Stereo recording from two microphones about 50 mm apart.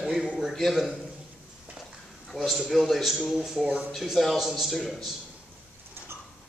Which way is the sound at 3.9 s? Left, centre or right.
Centre.